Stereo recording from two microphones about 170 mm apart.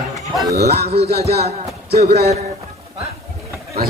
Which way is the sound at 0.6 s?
40° right (ahead or behind).